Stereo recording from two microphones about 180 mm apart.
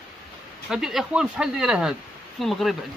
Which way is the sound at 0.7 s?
Centre (ahead or behind).